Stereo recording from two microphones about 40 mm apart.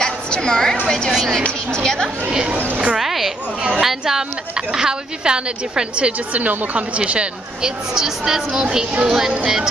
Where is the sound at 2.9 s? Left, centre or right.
Centre; by 6.1 s right.